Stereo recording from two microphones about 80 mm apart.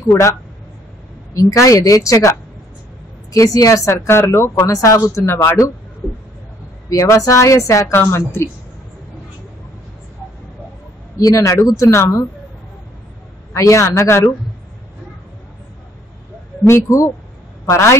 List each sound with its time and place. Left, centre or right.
1.3 s a woman's voice: left
3.3 s speech: left
5.2 s speech: left
6.9 s speech: left
11.1 s speech: left
13.5 s speech: left
16.6 s speech: left